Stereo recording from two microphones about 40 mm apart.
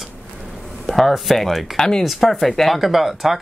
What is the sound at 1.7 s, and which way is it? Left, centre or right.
Speech, centre.